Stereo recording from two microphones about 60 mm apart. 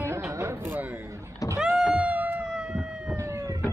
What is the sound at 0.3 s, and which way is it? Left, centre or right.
Music, right.